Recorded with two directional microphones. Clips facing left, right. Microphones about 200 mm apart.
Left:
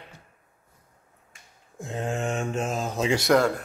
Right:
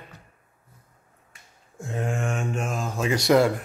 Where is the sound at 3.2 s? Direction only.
5° right (ahead or behind).